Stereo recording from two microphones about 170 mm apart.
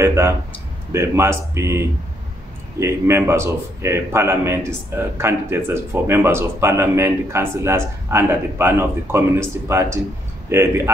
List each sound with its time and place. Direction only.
0.0 s a man's voice: 15° right (ahead or behind)